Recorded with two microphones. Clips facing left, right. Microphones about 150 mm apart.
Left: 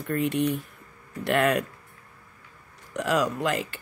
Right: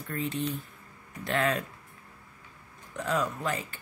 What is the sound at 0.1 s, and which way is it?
Speech, 70° left (ahead or behind).